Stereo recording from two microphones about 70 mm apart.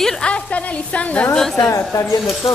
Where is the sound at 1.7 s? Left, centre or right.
Left.